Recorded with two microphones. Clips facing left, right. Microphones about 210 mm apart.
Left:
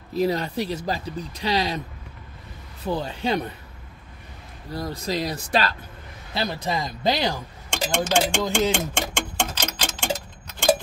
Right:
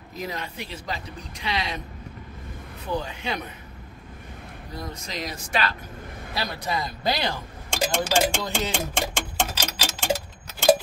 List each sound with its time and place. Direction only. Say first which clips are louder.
0.1 s speech: left 10 dB; 35° left (ahead or behind)
2.9 s speech: left 4 dB; 35° left (ahead or behind)
4.7 s speech: left 7 dB; 35° left (ahead or behind)
6.3 s speech: left 3 dB; 25° left (ahead or behind)
7.7 s speech: left 1 dB; 5° right (ahead or behind)
8.7 s clock: left 1 dB; 5° right (ahead or behind)